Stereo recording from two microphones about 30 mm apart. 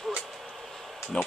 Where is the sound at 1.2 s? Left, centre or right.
Left.